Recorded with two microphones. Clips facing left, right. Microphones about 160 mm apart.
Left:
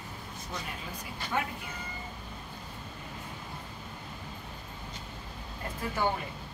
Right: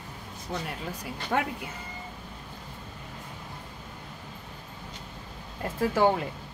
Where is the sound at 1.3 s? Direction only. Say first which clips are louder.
Right 5 dB; 60° right (ahead or behind).